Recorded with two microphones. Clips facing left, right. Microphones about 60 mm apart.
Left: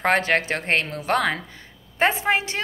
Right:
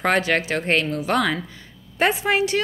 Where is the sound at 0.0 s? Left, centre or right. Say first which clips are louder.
Even; left.